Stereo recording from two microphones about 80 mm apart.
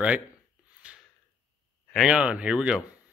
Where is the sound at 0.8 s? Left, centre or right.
Centre.